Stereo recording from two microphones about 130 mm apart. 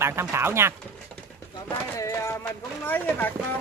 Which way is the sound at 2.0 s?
25° left (ahead or behind).